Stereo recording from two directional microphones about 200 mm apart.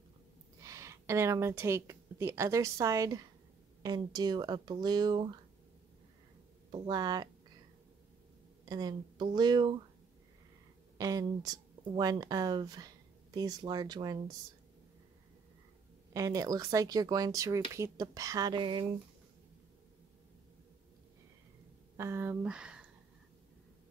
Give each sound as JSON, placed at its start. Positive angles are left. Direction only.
{"t": 0.6, "sound": "a woman's voice", "side_deg": -15}
{"t": 6.7, "sound": "speech", "side_deg": -20}
{"t": 8.6, "sound": "speech", "side_deg": -20}
{"t": 11.0, "sound": "speech", "side_deg": -20}
{"t": 16.1, "sound": "speech", "side_deg": -15}
{"t": 21.9, "sound": "speech", "side_deg": -15}